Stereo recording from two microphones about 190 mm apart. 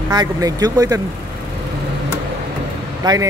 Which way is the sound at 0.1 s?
20° right (ahead or behind).